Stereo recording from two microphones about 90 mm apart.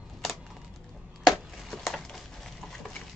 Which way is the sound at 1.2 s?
Centre (ahead or behind).